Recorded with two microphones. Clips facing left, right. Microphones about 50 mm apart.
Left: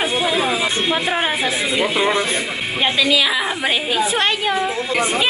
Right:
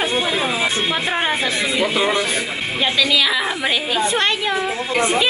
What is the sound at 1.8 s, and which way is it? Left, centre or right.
A woman's voice, centre.